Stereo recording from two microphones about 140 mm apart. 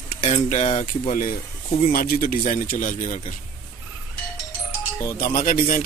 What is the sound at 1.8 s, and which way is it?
Speech, 90° left.